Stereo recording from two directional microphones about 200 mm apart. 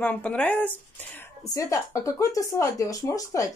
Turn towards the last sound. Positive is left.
turn(degrees=15)  # may be behind; listen again after turning